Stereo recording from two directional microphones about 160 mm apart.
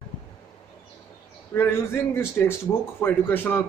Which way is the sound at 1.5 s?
15° left (ahead or behind).